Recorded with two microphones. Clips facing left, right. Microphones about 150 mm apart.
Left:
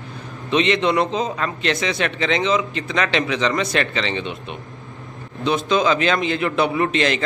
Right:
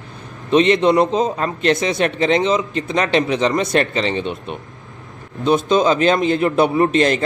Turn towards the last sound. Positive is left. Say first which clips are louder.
# right 5 dB
turn(degrees=-45)  # may be behind; listen again after turning